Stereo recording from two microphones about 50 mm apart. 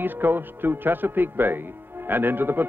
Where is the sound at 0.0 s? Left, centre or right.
Right.